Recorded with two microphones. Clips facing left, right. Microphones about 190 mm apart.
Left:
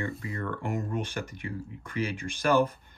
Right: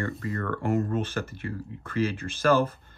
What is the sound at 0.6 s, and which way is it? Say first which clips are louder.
Speech: right 8 dB; 15° left (ahead or behind).